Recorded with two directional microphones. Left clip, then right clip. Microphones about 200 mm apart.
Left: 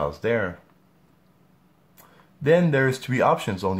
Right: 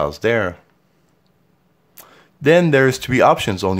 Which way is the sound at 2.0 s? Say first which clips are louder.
Right 8 dB; 45° right (ahead or behind).